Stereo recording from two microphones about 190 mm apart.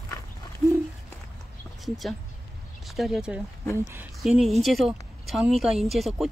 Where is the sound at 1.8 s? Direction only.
Centre (ahead or behind).